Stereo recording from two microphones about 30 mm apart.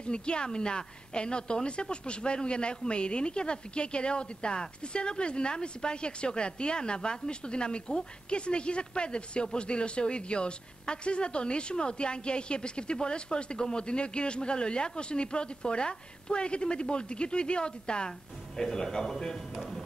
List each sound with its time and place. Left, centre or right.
0.0 s a woman's voice: left
18.6 s a man's voice: centre